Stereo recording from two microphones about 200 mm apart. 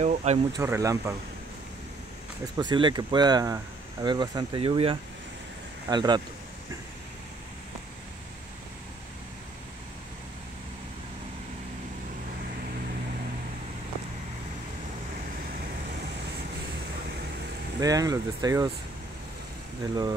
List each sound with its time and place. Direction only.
0.0 s speech: 35° right (ahead or behind)
0.5 s speech: 15° right (ahead or behind)
2.5 s speech: 20° right (ahead or behind)
17.7 s speech: 20° right (ahead or behind)